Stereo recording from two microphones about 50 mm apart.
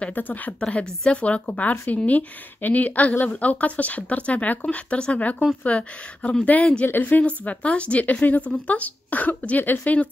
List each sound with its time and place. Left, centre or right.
0.1 s a woman's voice: left
0.6 s a woman's voice: left